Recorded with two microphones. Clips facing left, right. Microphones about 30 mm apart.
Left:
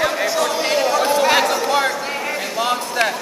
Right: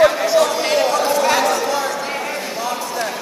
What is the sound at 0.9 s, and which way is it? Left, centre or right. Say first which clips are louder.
Chatter: left 1 dB; centre.